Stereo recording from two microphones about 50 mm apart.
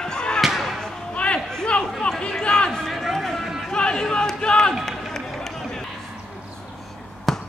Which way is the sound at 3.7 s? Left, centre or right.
Centre.